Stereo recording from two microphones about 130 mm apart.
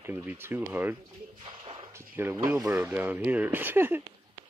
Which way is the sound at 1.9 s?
20° right (ahead or behind).